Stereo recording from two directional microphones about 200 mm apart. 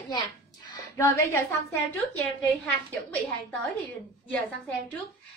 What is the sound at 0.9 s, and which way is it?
Speech, 15° left (ahead or behind).